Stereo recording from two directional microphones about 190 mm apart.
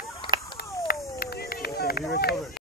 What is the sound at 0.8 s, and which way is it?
Run, 50° left (ahead or behind).